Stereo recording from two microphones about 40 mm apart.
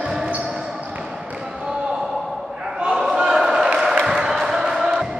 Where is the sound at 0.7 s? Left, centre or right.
Right.